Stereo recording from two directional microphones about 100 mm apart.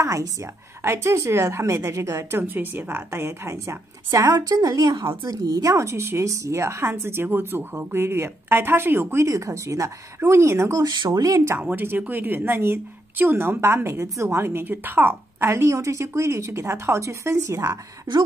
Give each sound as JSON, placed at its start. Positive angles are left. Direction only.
{"t": 0.0, "sound": "a woman's voice", "side_deg": -30}
{"t": 10.8, "sound": "speech", "side_deg": -50}
{"t": 11.1, "sound": "speech", "side_deg": -35}
{"t": 11.5, "sound": "a woman's voice", "side_deg": -20}